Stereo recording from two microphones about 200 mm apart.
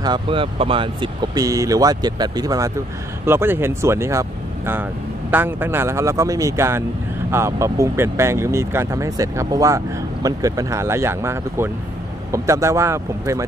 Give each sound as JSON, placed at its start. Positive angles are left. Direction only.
{"t": 0.0, "sound": "speech", "side_deg": -25}